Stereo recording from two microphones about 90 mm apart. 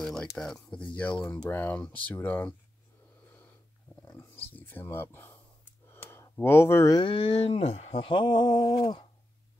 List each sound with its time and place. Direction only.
0.0 s a sound: 5° left (ahead or behind)
0.4 s speech: 10° left (ahead or behind)
4.1 s speech: 20° left (ahead or behind)
5.9 s a sound: 30° left (ahead or behind)
6.4 s speech: 30° left (ahead or behind)
7.1 s speech: 90° left; by 9.0 s 55° left (ahead or behind)